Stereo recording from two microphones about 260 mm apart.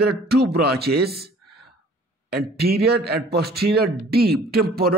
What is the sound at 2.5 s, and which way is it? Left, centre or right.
A man's voice, right.